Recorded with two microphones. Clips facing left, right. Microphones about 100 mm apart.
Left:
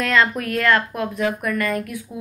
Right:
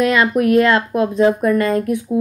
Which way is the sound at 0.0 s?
15° right (ahead or behind).